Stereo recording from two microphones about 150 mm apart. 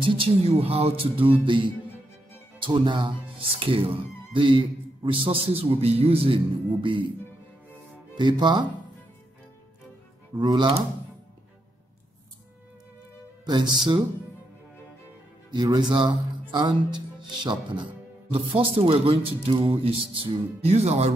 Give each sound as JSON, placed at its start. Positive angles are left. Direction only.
{"t": 0.0, "sound": "a man's voice", "side_deg": -35}
{"t": 8.2, "sound": "a man's voice", "side_deg": -30}
{"t": 10.4, "sound": "speech", "side_deg": -30}
{"t": 13.5, "sound": "a man's voice", "side_deg": -35}
{"t": 15.5, "sound": "a man's voice", "side_deg": -30}